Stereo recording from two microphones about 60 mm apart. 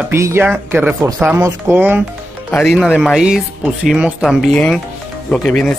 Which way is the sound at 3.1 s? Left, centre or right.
Centre.